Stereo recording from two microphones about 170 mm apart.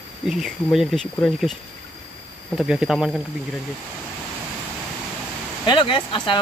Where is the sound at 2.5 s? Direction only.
5° right (ahead or behind).